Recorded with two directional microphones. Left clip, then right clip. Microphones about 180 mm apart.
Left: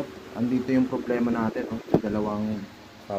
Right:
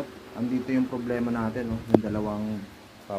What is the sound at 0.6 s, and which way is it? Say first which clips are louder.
A man's voice: left 3 dB; 10° left (ahead or behind).